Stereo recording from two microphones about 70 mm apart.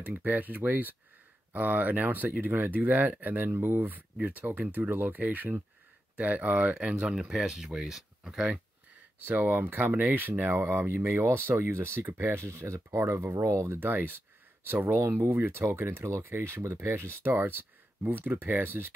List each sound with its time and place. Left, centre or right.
0.0 s speech: right
9.2 s speech: right
13.7 s speech: right